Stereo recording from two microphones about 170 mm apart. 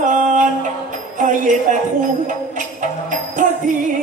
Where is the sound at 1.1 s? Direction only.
50° right (ahead or behind).